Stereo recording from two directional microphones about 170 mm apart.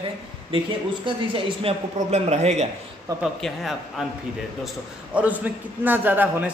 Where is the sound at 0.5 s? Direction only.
30° right (ahead or behind).